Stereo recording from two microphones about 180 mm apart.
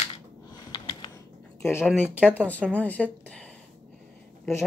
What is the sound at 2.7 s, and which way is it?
Speech, 10° left (ahead or behind).